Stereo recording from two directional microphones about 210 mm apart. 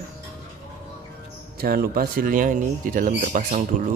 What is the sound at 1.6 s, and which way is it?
Speech, 45° right (ahead or behind).